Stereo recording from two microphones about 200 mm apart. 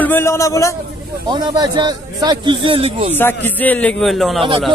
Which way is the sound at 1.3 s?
20° right (ahead or behind).